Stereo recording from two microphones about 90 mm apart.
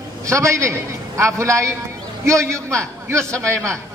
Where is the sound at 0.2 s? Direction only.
35° right (ahead or behind).